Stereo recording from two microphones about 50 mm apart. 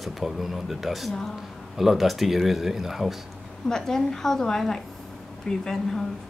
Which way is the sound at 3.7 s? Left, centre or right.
Centre.